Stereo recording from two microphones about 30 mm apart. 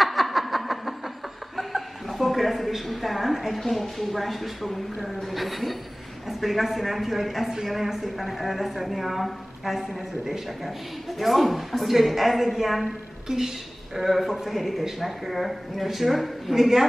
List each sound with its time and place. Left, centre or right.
0.0 s a sound: centre
5.0 s a woman's voice: centre
12.8 s a woman's voice: centre
14.4 s a woman's voice: centre
16.5 s a woman's voice: centre